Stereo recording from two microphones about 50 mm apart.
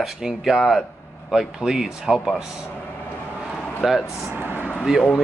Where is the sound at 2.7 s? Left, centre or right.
Left.